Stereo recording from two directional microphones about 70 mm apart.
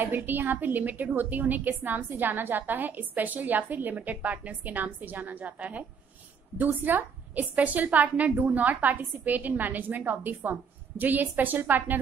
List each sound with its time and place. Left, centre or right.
0.0 s a woman's voice: right